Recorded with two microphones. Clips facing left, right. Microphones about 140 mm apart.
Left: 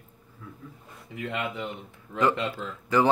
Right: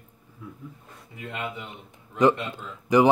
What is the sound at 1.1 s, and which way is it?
Speech, 90° left.